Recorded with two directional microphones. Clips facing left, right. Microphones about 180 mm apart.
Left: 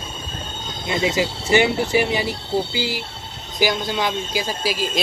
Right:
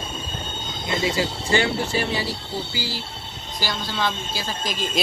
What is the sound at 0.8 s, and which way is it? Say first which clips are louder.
A woman's voice: left 3 dB; 20° left (ahead or behind).